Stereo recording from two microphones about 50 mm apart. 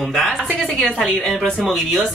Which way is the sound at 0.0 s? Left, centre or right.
Centre.